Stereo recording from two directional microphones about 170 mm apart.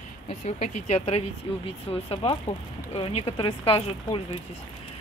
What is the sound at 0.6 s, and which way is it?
Speech, 40° left (ahead or behind).